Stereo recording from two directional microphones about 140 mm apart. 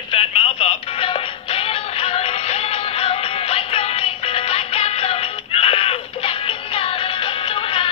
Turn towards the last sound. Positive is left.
turn(degrees=40)  # may be behind; listen again after turning